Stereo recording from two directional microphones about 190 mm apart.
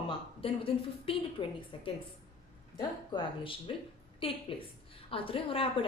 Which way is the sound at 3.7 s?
30° left (ahead or behind).